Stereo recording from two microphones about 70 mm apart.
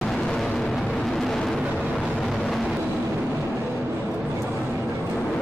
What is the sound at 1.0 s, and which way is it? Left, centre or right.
Vehicle, centre.